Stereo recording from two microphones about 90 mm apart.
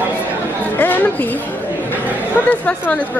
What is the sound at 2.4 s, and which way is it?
Speech, 20° left (ahead or behind).